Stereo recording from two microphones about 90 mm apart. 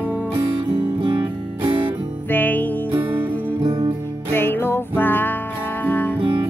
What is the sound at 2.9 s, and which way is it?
Music, 25° right (ahead or behind).